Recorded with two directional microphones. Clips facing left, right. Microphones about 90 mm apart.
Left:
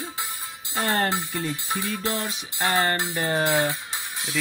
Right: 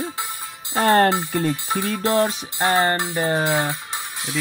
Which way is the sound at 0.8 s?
65° right (ahead or behind).